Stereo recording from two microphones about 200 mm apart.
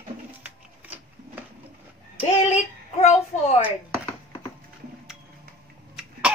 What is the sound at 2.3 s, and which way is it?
Child singing, 35° left (ahead or behind).